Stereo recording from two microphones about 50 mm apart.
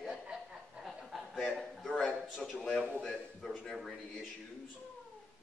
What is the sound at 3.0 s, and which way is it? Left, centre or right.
Speech, centre.